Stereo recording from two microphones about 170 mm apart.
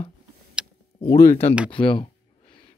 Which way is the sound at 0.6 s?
5° right (ahead or behind).